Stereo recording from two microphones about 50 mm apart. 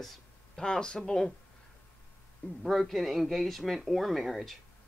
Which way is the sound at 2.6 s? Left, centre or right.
Centre.